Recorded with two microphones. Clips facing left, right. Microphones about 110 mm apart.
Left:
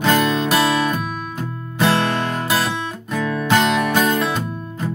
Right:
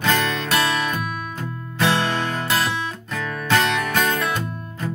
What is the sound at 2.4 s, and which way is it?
Music, 15° left (ahead or behind).